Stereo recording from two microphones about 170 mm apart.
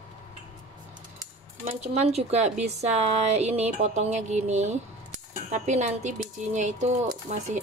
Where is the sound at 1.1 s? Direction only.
45° right (ahead or behind).